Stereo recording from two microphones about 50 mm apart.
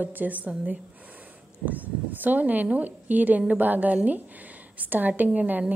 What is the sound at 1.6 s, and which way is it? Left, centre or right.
A woman's voice, right.